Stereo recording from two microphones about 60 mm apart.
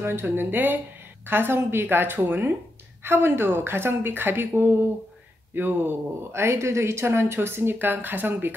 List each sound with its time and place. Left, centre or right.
0.0 s a woman's voice: right
6.4 s speech: right